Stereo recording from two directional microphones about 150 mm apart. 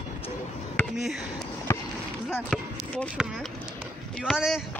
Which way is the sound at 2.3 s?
5° left (ahead or behind).